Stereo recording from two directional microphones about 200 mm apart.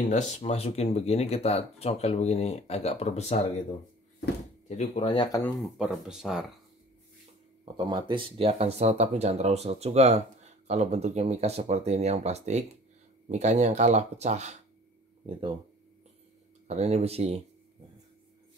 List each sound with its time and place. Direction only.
0.1 s speech: 30° left (ahead or behind)
4.6 s speech: 35° left (ahead or behind)
5.8 s speech: 5° right (ahead or behind)
7.7 s speech: 25° right (ahead or behind)
16.6 s speech: 35° right (ahead or behind)